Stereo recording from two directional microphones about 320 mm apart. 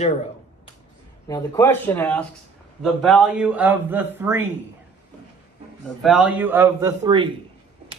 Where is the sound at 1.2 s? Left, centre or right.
Centre.